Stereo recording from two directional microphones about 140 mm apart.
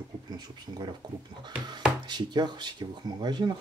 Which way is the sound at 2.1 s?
30° right (ahead or behind).